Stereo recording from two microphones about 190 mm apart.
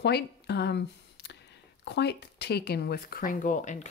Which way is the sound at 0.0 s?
60° left (ahead or behind).